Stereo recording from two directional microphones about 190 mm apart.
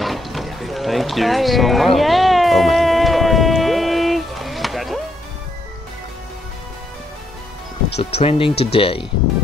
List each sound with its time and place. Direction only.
0.0 s boat: centre (ahead or behind)
8.0 s speech: 30° left (ahead or behind)